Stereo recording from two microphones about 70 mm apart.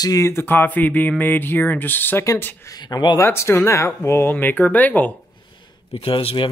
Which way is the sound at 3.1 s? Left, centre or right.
Left.